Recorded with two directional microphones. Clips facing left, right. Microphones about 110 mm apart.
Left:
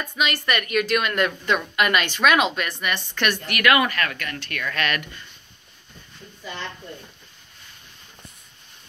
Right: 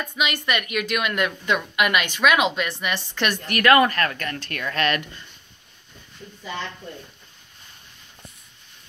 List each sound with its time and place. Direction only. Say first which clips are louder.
0.2 s speech: left 1 dB; 15° right (ahead or behind)
2.8 s speech: left 3 dB; 30° right (ahead or behind)